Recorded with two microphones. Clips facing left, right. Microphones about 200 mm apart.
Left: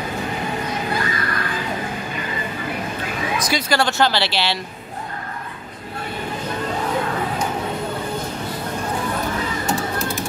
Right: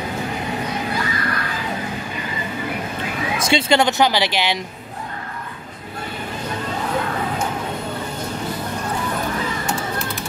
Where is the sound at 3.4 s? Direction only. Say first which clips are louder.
Right 5 dB; 25° right (ahead or behind).